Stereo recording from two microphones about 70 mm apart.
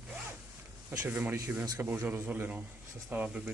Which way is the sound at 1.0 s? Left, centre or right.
Right.